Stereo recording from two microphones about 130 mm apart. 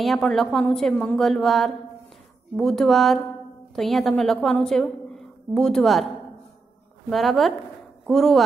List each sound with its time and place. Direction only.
0.0 s a woman's voice: centre (ahead or behind)